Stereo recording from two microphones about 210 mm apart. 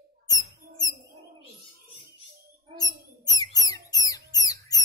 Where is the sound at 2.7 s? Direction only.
15° left (ahead or behind).